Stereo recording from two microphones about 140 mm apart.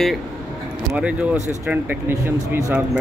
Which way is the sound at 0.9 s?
10° right (ahead or behind).